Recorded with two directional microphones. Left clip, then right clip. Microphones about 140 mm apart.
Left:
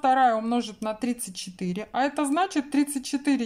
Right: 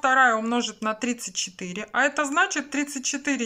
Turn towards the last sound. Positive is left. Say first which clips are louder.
# even
turn(degrees=30)  # may be behind; listen again after turning